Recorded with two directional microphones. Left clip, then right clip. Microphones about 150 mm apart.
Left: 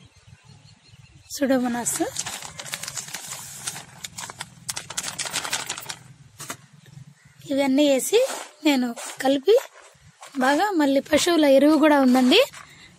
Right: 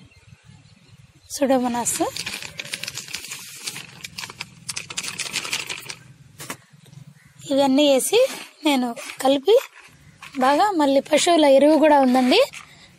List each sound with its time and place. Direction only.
1.3 s a sound: 5° left (ahead or behind)
4.2 s horse: 20° left (ahead or behind)
4.7 s clip-clop: 40° left (ahead or behind)
7.4 s speech: centre (ahead or behind)